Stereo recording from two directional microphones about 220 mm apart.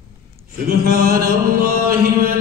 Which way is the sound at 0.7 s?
40° right (ahead or behind).